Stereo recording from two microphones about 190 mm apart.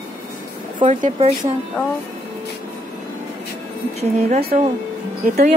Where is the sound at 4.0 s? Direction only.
35° right (ahead or behind).